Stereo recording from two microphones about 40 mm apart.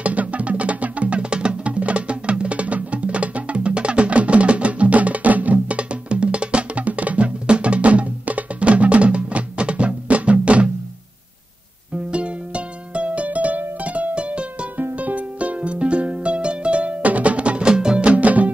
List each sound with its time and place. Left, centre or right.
0.0 s music: right
11.9 s music: right